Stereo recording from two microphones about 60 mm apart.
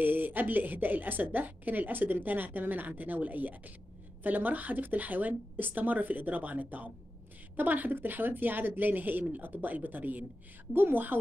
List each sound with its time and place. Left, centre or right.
0.0 s a woman's voice: right